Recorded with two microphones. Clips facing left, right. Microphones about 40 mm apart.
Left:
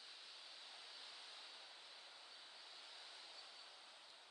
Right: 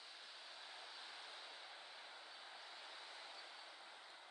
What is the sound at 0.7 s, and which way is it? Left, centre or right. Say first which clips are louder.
Vehicle: right 3 dB; right.